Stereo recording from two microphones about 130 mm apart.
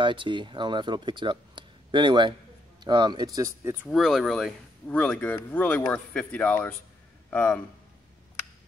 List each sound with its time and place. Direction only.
0.0 s speech: 40° right (ahead or behind)
3.8 s a man's voice: centre (ahead or behind)